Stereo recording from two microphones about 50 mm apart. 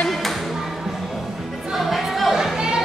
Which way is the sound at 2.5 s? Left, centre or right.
Centre.